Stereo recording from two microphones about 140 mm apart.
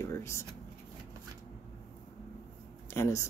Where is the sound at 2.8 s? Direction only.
20° left (ahead or behind).